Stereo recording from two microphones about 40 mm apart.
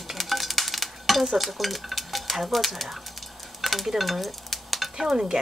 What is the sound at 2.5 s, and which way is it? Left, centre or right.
Dishes, centre.